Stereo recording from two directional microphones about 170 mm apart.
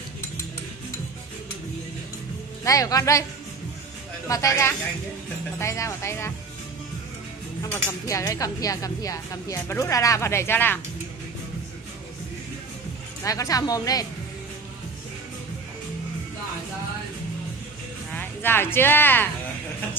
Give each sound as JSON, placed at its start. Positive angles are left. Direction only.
{"t": 2.6, "sound": "speech", "side_deg": 20}
{"t": 4.3, "sound": "speech", "side_deg": 20}
{"t": 7.7, "sound": "speech", "side_deg": 20}
{"t": 13.2, "sound": "speech", "side_deg": 20}
{"t": 18.1, "sound": "speech", "side_deg": 10}